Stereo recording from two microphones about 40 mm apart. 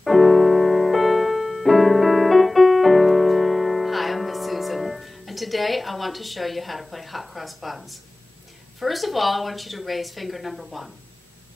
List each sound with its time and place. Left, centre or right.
0.0 s music: centre
8.7 s a woman's voice: centre